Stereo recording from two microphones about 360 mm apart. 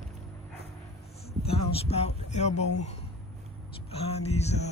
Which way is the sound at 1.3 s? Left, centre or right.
Centre.